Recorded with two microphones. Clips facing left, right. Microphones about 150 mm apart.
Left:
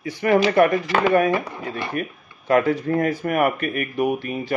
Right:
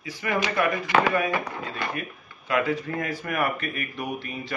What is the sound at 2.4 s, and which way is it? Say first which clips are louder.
Speech: left 7 dB; 40° left (ahead or behind).